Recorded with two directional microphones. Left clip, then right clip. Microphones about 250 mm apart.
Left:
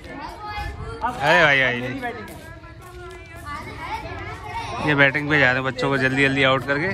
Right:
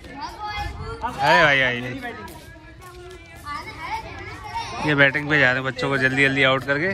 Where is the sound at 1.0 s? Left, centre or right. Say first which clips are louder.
Even; centre.